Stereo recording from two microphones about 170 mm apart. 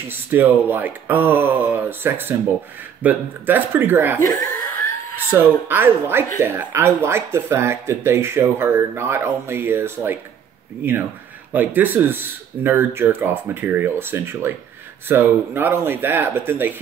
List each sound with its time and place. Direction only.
0.1 s speech: 10° right (ahead or behind)
4.2 s speech: 20° left (ahead or behind)
5.3 s speech: 10° right (ahead or behind)